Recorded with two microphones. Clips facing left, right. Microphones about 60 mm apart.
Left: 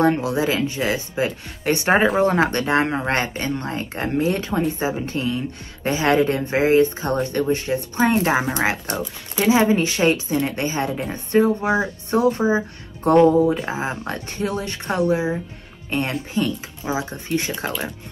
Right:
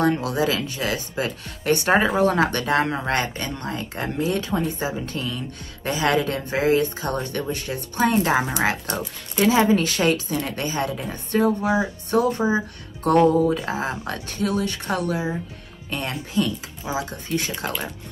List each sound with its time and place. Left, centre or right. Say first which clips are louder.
0.0 s speech: left 2 dB; left
8.9 s speech: left 1 dB; centre
9.5 s speech: left 2 dB; left
13.3 s speech: left 2 dB; centre; by 17.7 s left